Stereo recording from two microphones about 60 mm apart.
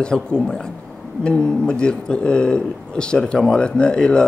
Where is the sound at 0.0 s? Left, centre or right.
Centre.